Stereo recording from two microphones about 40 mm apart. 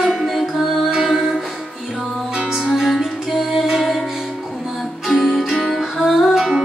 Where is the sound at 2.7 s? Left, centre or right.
Centre.